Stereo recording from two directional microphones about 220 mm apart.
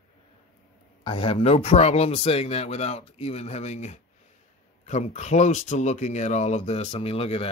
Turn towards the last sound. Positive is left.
turn(degrees=25)  # may be behind; listen again after turning